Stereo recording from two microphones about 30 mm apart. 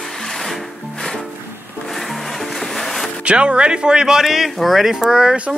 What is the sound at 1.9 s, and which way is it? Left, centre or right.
Music, centre.